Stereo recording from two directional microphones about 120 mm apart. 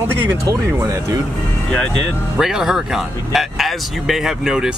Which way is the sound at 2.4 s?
5° right (ahead or behind).